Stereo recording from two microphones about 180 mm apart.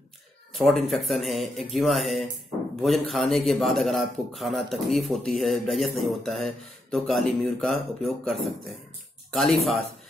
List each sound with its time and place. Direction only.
0.6 s a man's voice: centre (ahead or behind)